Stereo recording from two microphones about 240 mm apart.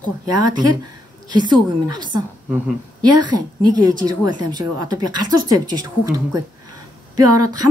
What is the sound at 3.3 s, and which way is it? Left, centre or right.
Speech, centre.